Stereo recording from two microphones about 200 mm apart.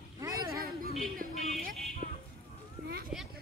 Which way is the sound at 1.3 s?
35° left (ahead or behind).